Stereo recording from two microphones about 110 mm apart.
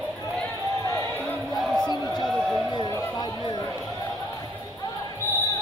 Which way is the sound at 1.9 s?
35° left (ahead or behind).